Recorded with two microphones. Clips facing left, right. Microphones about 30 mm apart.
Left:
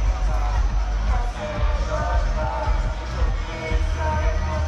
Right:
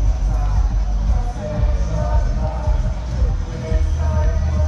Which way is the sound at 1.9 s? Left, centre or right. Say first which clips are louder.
Even; left.